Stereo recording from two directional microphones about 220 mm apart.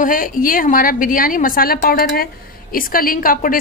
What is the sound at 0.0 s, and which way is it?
A woman's voice, 40° left (ahead or behind).